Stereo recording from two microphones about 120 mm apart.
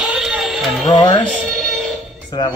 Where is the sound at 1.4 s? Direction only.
Centre (ahead or behind).